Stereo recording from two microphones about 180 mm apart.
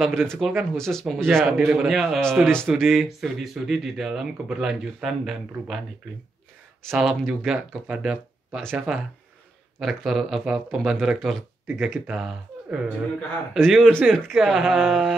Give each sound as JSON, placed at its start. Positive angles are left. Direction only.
{"t": 0.3, "sound": "a man's voice", "side_deg": 0}
{"t": 6.9, "sound": "a man's voice", "side_deg": -5}